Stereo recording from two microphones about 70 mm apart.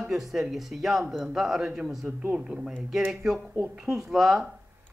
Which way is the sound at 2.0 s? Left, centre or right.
Centre.